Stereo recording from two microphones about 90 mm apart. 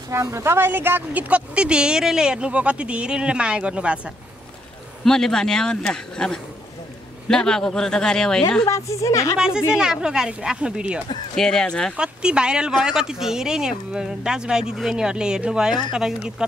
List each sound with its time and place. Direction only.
0.1 s speech: 30° right (ahead or behind); by 4.1 s 15° right (ahead or behind)
5.0 s a man's voice: 5° left (ahead or behind)
8.6 s a woman's voice: 35° left (ahead or behind)
9.8 s speech: 10° right (ahead or behind)
11.3 s a man's voice: 5° left (ahead or behind)
12.0 s speech: 10° right (ahead or behind)